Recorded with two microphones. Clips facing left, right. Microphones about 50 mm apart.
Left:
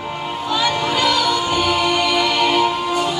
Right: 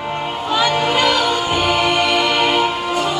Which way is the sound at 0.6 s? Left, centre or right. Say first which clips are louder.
Right 3 dB; right.